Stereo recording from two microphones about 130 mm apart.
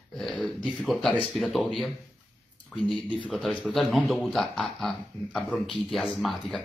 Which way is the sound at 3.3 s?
Centre (ahead or behind).